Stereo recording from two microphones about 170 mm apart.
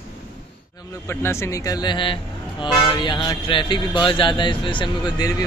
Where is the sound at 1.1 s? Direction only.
15° left (ahead or behind).